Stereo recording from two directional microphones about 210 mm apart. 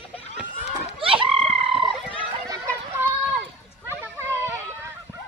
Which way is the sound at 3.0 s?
10° right (ahead or behind).